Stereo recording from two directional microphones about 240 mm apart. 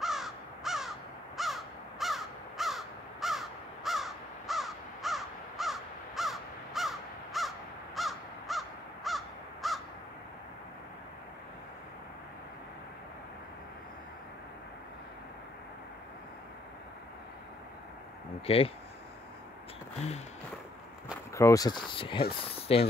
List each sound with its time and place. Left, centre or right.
0.0 s crow: centre
18.5 s speech: left
21.3 s speech: centre